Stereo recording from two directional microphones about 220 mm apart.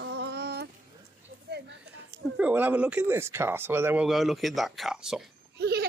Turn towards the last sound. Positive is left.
turn(degrees=-45)  # may be behind; listen again after turning